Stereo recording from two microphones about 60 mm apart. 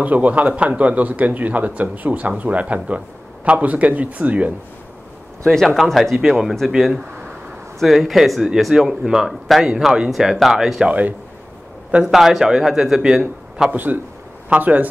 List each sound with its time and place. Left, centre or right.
0.0 s a man's voice: right
5.8 s speech: centre
6.7 s a man's voice: centre
7.8 s speech: centre
10.9 s a man's voice: right
12.1 s a man's voice: centre
13.7 s a man's voice: right